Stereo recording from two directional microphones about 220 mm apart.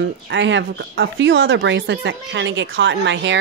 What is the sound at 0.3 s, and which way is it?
Speech, 55° right (ahead or behind).